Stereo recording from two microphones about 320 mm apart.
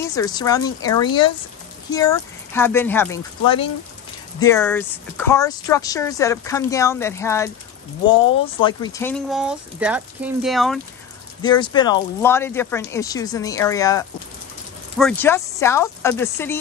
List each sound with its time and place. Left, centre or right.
0.0 s speech: centre
8.5 s speech: centre
11.4 s speech: centre